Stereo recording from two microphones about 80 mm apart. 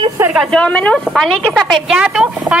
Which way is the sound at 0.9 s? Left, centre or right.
Centre.